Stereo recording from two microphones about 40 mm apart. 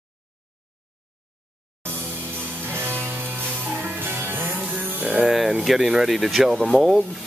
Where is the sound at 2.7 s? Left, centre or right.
Right.